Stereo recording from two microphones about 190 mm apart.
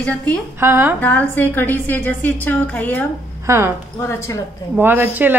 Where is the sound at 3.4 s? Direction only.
15° right (ahead or behind).